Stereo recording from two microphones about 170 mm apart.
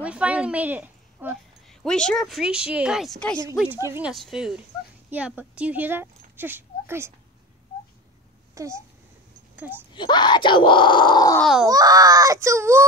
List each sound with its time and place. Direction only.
0.0 s a woman's voice: 5° right (ahead or behind)
1.7 s speech: 5° left (ahead or behind)
3.5 s speech: 10° right (ahead or behind)
4.1 s speech: centre (ahead or behind)
8.5 s speech: 15° right (ahead or behind)
9.9 s speech: 25° left (ahead or behind)
11.6 s a child's voice: 20° right (ahead or behind)